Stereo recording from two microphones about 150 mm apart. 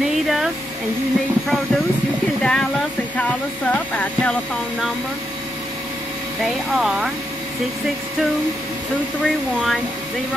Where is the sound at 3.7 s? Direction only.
5° left (ahead or behind).